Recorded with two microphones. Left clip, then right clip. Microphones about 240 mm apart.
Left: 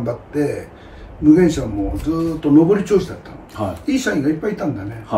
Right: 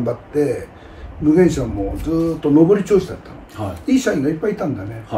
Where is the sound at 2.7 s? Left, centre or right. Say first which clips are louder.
Right 1 dB; centre.